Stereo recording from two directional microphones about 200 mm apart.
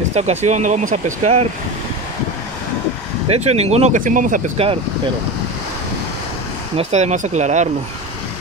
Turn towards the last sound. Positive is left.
turn(degrees=-35)  # may be behind; listen again after turning